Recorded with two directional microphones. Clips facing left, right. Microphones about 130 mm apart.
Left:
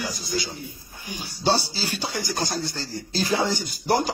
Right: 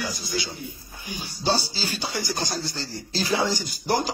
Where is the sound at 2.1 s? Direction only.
45° left (ahead or behind).